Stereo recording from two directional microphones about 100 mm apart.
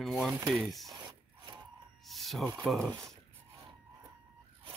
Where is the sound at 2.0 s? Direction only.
Centre (ahead or behind).